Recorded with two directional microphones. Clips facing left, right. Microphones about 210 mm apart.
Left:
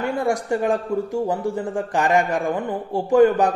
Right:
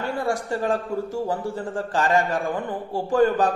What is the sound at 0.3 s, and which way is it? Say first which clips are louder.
A man's voice: left 3 dB; 15° left (ahead or behind).